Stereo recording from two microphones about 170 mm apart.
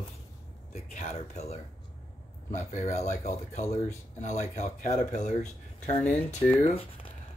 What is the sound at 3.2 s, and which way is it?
Speech, 40° left (ahead or behind).